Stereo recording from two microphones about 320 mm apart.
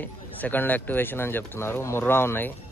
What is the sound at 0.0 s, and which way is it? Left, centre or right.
Speech, centre.